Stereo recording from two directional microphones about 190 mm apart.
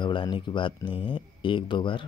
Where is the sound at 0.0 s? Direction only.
25° left (ahead or behind).